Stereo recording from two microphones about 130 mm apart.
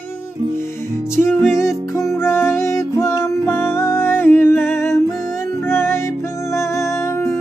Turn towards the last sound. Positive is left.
turn(degrees=20)  # may be behind; listen again after turning